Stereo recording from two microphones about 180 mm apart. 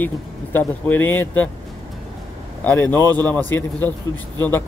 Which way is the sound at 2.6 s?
10° left (ahead or behind).